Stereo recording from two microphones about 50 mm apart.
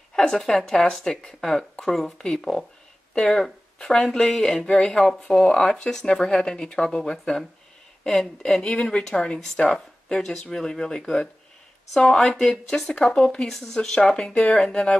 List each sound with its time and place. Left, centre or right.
0.1 s speech: centre
4.9 s speech: centre
8.9 s speech: centre
13.1 s speech: left